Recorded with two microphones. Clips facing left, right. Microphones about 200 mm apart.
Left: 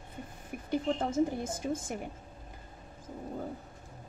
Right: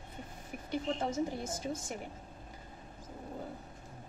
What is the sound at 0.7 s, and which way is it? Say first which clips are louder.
Speech: left 4 dB; 55° left (ahead or behind).